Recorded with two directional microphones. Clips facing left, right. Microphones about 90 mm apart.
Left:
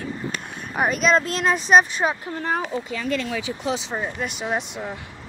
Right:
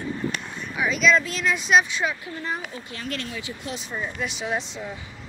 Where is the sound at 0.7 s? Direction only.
50° left (ahead or behind).